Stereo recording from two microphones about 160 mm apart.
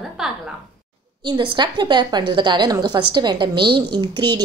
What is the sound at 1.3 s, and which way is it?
A woman's voice, 30° right (ahead or behind).